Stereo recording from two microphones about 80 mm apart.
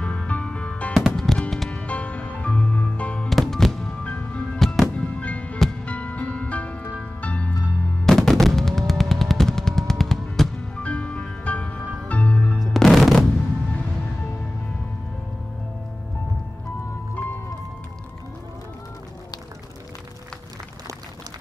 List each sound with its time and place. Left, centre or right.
0.0 s music: centre
0.9 s music: centre
1.7 s music: centre
3.3 s music: centre
4.0 s music: centre
4.6 s music: centre
4.9 s music: centre
8.0 s music: centre
10.8 s music: centre
12.5 s music: centre
17.1 s music: left